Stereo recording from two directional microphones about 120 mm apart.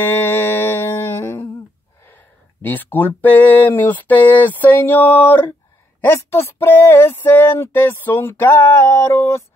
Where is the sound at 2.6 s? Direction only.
15° left (ahead or behind).